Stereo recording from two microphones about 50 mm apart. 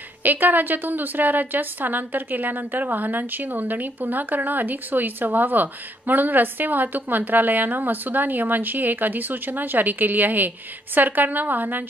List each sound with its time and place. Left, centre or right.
0.2 s a woman's voice: right